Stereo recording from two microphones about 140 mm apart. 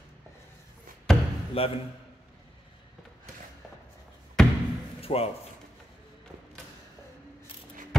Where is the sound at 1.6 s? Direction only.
45° left (ahead or behind).